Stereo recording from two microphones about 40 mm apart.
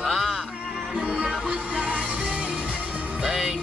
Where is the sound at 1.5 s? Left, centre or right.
Right.